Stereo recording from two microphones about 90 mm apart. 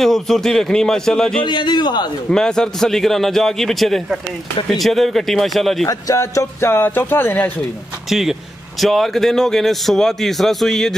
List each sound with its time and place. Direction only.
0.0 s a man's voice: 5° left (ahead or behind)
1.4 s a man's voice: 60° left (ahead or behind)
2.2 s a man's voice: 5° left (ahead or behind)
5.9 s speech: 35° left (ahead or behind); by 7.5 s 20° left (ahead or behind)
8.1 s a man's voice: 5° right (ahead or behind)